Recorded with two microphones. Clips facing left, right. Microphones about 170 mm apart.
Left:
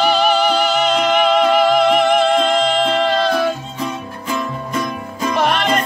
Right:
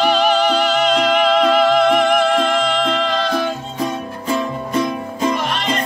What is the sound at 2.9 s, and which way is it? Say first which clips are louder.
Music: left 3 dB; 45° left (ahead or behind).